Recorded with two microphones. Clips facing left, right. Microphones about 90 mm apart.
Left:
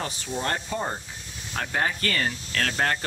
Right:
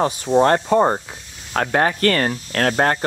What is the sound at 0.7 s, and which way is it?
Speech, 65° right (ahead or behind).